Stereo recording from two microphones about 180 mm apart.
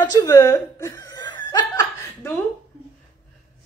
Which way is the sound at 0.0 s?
20° left (ahead or behind).